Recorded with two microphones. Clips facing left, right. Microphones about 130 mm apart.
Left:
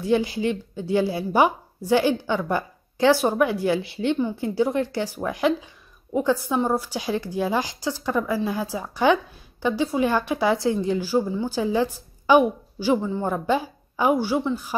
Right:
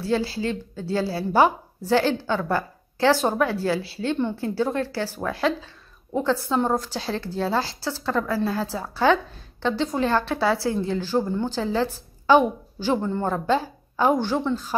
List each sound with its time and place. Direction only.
0.0 s a woman's voice: 15° left (ahead or behind)